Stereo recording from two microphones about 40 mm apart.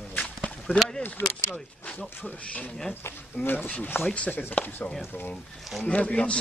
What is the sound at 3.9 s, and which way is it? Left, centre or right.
Speech, left.